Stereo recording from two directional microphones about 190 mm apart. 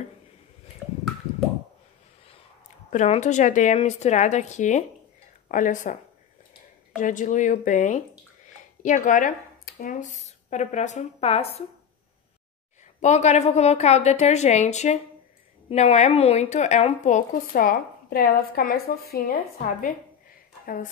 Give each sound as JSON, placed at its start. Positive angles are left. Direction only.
{"t": 2.9, "sound": "speech", "side_deg": 40}
{"t": 7.0, "sound": "speech", "side_deg": 40}
{"t": 13.0, "sound": "a woman's voice", "side_deg": 35}